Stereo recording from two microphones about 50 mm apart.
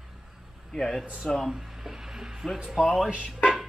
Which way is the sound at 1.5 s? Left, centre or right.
Centre.